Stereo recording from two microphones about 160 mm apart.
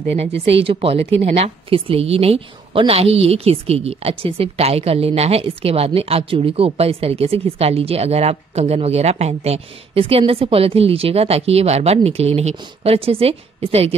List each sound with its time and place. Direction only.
0.1 s speech: 40° right (ahead or behind)